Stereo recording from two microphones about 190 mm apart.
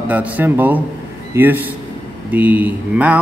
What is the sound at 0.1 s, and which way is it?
A man's voice, 10° right (ahead or behind).